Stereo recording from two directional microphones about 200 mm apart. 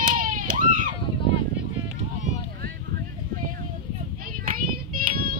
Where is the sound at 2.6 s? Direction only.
50° right (ahead or behind).